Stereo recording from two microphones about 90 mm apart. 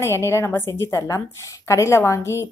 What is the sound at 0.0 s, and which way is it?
A woman's voice, 30° left (ahead or behind).